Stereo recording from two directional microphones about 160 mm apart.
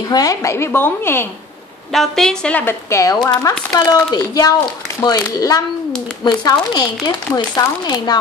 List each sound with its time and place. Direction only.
0.1 s speech: 20° left (ahead or behind)
1.9 s speech: centre (ahead or behind); by 8.2 s 25° left (ahead or behind)